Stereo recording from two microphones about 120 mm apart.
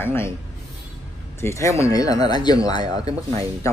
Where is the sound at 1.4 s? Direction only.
25° left (ahead or behind).